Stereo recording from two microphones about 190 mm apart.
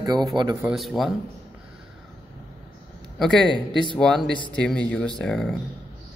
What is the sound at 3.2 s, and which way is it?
Speech, 5° left (ahead or behind).